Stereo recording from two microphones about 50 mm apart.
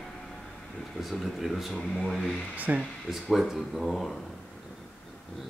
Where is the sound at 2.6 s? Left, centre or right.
Right.